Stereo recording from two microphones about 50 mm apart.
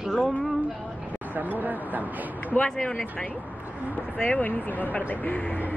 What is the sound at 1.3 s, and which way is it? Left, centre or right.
Speech, right.